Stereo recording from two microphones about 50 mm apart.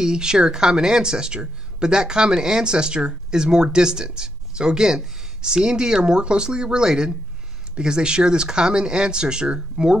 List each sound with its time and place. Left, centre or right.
0.0 s speech: centre